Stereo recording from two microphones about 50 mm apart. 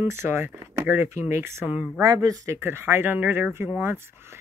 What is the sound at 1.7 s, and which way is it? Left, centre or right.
Speech, right.